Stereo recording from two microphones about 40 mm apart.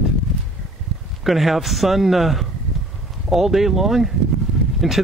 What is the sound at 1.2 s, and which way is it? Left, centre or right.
Speech, centre.